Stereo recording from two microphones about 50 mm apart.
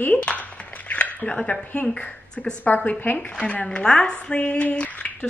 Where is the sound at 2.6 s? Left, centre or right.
Left.